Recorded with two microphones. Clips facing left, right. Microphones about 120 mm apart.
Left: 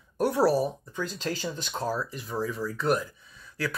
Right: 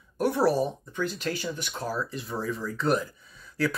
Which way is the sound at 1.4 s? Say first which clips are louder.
Left 1 dB; 35° left (ahead or behind).